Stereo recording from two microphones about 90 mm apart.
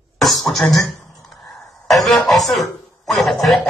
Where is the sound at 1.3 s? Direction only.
Centre (ahead or behind).